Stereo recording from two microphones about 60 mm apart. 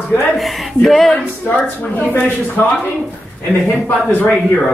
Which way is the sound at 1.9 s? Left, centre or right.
Left.